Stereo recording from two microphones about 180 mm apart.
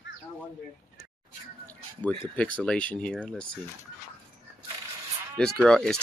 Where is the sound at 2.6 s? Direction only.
5° left (ahead or behind).